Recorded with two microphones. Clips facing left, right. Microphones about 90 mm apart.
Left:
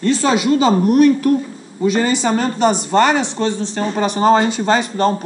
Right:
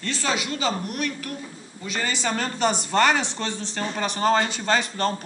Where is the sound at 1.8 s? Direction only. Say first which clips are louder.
Left 12 dB; 20° left (ahead or behind).